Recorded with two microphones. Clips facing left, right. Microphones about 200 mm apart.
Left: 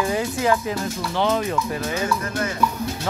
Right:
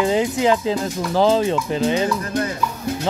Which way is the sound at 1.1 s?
30° right (ahead or behind).